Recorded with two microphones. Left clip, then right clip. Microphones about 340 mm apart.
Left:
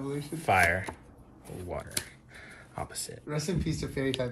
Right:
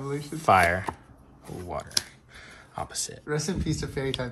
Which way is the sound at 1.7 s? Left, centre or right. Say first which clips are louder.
Right 6 dB; centre.